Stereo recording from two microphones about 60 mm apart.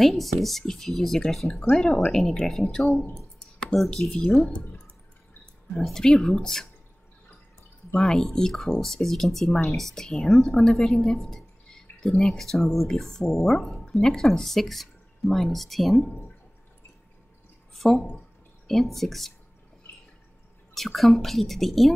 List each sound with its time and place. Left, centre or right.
0.0 s speech: centre
4.5 s speech: left
5.8 s speech: centre
7.9 s speech: centre
17.7 s speech: centre
20.7 s speech: centre